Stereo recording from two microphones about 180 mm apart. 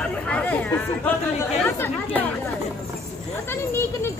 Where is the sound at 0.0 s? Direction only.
5° left (ahead or behind).